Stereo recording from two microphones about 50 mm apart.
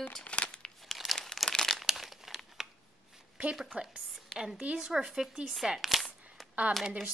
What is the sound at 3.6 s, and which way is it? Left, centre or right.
Speech, centre.